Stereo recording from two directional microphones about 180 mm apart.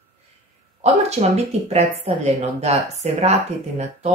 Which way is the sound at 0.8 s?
35° right (ahead or behind).